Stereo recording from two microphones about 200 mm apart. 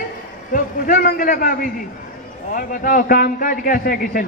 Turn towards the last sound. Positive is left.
turn(degrees=45)  # may be behind; listen again after turning